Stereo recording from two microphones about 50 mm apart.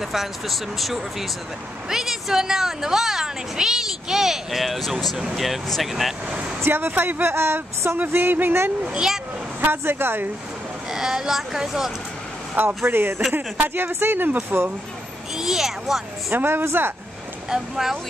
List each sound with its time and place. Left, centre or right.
0.0 s a woman's voice: centre
6.6 s speech: right
8.1 s speech: right
8.8 s a woman's voice: centre
9.6 s speech: right
10.9 s a woman's voice: centre
12.5 s speech: right
15.3 s a woman's voice: centre
16.3 s speech: right
17.5 s a woman's voice: centre